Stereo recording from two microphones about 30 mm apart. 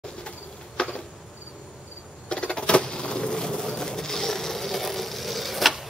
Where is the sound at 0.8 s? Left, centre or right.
Left.